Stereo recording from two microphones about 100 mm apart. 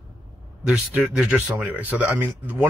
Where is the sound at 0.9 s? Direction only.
15° right (ahead or behind).